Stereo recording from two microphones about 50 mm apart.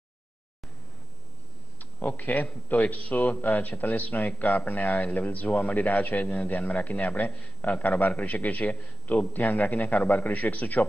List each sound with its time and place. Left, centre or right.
1.8 s speech: left